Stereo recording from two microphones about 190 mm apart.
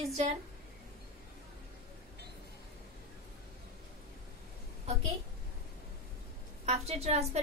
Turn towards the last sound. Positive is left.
turn(degrees=-35)  # may be behind; listen again after turning